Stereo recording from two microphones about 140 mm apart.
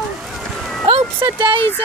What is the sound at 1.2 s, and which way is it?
Speech, 35° right (ahead or behind).